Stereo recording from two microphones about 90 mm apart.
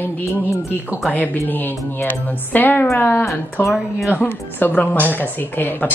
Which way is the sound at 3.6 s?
Centre (ahead or behind).